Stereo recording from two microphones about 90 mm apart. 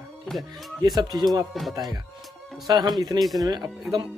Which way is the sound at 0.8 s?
50° right (ahead or behind).